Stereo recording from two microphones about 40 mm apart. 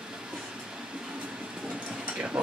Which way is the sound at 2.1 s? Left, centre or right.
Right.